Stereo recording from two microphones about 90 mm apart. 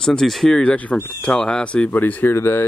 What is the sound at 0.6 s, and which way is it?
Speech, 15° left (ahead or behind).